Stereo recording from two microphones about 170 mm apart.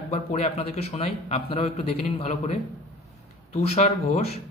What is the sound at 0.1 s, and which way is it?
A man's voice, 40° left (ahead or behind).